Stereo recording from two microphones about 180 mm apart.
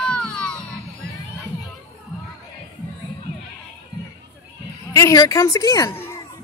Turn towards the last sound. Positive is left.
turn(degrees=20)  # may be behind; listen again after turning